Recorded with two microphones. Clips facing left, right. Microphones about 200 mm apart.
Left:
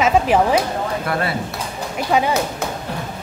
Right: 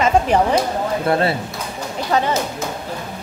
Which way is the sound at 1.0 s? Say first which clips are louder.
Right 8 dB; 30° right (ahead or behind).